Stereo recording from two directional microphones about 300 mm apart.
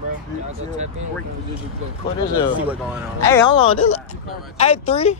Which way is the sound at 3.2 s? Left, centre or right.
Centre.